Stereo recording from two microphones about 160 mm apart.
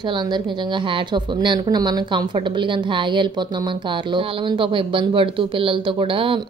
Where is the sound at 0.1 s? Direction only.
30° right (ahead or behind).